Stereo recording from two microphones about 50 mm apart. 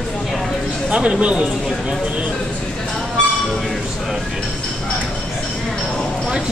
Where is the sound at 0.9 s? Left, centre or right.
Centre.